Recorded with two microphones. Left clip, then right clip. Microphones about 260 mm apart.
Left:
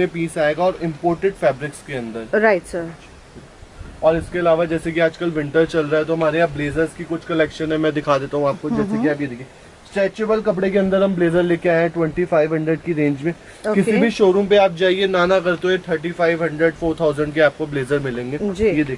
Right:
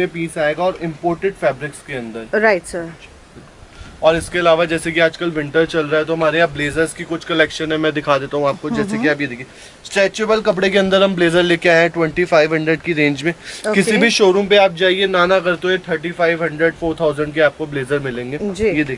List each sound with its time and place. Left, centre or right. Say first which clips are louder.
0.0 s speech: right 1 dB; centre
4.0 s speech: right 3 dB; centre